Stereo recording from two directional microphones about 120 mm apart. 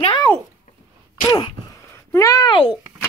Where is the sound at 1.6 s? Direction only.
25° left (ahead or behind).